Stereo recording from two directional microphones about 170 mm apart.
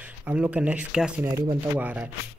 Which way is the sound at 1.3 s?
30° right (ahead or behind).